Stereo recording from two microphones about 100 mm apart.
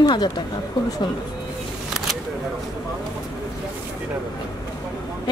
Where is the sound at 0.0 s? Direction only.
45° left (ahead or behind).